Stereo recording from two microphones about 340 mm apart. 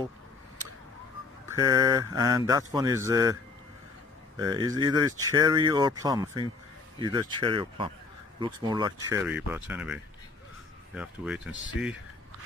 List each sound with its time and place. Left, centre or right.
1.5 s speech: centre
4.4 s speech: centre
11.0 s speech: centre